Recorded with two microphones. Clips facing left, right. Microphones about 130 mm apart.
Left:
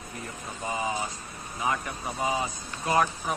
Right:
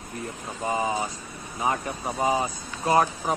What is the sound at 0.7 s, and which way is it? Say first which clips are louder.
Speech: right 4 dB; 35° right (ahead or behind).